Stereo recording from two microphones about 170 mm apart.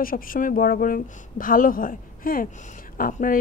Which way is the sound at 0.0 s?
55° left (ahead or behind).